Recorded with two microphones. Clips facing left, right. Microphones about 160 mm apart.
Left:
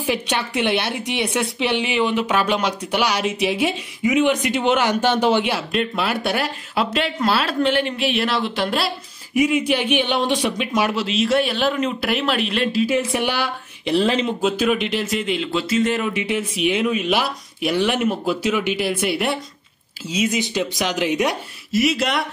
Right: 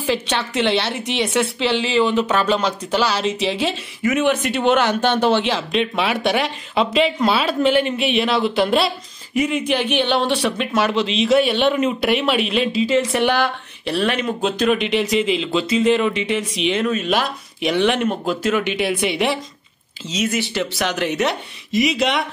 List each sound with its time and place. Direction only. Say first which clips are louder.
0.0 s a woman's voice: right 1 dB; 10° left (ahead or behind)
12.8 s a woman's voice: right 3 dB; 10° left (ahead or behind)
14.2 s speech: even; 5° left (ahead or behind)
20.1 s a woman's voice: even; 10° left (ahead or behind)